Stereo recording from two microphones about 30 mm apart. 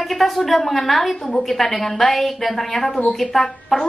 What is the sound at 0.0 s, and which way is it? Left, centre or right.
A woman's voice, centre.